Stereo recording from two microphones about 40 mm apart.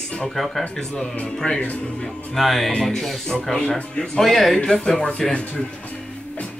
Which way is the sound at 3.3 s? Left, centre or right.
Centre.